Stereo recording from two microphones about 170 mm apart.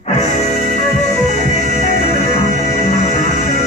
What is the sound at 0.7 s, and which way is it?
Music, 40° left (ahead or behind).